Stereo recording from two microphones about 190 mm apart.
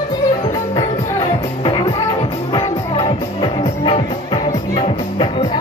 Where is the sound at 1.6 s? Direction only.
25° left (ahead or behind).